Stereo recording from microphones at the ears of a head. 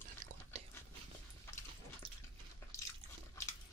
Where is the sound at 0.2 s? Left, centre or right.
Right.